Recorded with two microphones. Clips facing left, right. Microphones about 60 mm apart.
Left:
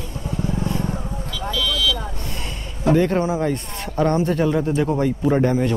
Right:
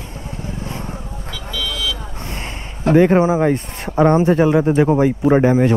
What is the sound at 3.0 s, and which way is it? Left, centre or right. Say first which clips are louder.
A man's voice: right 10 dB; right.